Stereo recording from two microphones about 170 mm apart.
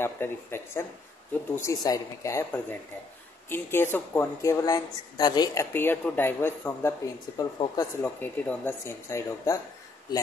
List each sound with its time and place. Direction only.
0.0 s speech: 15° left (ahead or behind)
8.0 s speech: 10° left (ahead or behind)